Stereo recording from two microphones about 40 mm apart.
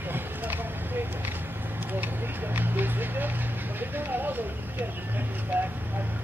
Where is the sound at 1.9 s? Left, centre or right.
Right.